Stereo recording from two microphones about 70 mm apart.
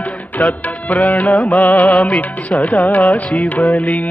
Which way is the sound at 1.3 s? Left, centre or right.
Centre.